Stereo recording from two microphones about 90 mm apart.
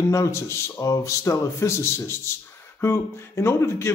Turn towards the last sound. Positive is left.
turn(degrees=30)  # may be behind; listen again after turning